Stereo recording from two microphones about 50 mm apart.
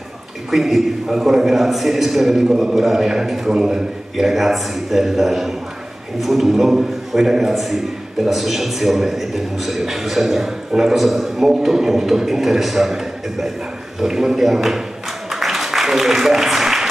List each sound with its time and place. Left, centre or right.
0.5 s a man's voice: centre
15.3 s applause: centre